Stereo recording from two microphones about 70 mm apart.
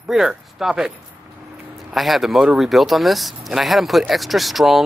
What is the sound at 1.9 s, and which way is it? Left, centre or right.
Speech, centre.